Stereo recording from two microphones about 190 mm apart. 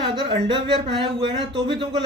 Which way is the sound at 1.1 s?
25° right (ahead or behind).